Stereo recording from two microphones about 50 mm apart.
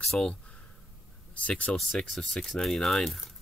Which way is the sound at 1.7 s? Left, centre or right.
Centre.